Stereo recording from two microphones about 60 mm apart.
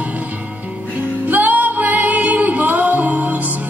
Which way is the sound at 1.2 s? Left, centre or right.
Right.